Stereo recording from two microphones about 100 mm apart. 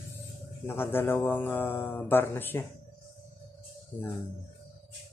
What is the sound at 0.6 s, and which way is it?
Speech, 20° left (ahead or behind).